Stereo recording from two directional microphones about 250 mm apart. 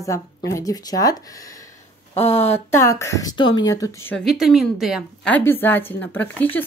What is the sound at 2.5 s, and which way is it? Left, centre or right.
Speech, centre.